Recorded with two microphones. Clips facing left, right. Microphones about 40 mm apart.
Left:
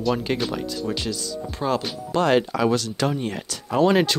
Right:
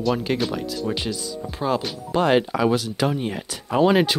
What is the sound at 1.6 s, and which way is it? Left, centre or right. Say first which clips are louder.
Speech: right 1 dB; centre.